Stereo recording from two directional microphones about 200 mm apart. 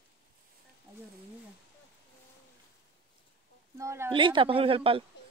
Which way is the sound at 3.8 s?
15° right (ahead or behind).